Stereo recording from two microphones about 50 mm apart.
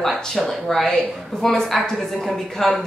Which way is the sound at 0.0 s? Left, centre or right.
Centre.